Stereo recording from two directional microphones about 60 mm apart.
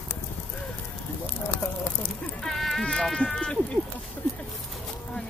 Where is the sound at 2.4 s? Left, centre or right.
Centre.